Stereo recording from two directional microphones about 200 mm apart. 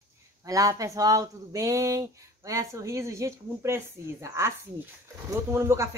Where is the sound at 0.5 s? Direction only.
15° right (ahead or behind).